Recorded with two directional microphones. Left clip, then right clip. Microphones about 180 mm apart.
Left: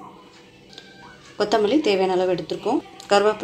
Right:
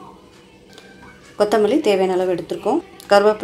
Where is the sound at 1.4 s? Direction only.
10° right (ahead or behind).